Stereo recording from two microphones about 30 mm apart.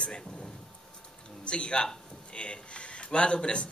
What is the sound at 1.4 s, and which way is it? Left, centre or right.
A man's voice, left.